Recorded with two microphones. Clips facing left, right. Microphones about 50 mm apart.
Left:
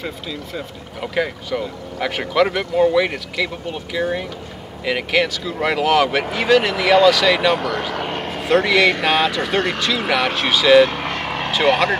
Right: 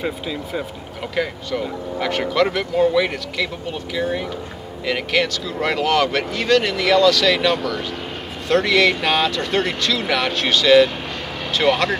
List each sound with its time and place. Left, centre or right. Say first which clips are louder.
0.0 s speech: right 3 dB; centre
1.0 s speech: left 2 dB; centre
7.5 s speech: left 2 dB; left
7.9 s vehicle: left 5 dB; left
8.5 s speech: left 1 dB; centre
10.9 s vehicle: left 5 dB; left